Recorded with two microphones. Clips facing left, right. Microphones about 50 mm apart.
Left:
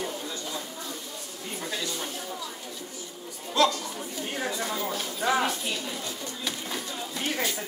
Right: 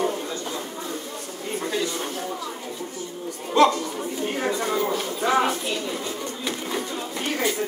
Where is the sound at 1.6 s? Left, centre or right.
Right.